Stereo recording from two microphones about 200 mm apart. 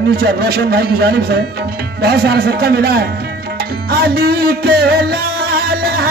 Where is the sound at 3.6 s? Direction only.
50° right (ahead or behind).